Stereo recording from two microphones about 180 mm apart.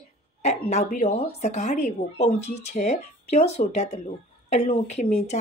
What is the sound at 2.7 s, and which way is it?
A woman's voice, 40° left (ahead or behind).